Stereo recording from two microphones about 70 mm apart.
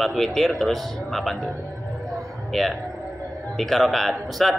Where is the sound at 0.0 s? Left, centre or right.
Centre.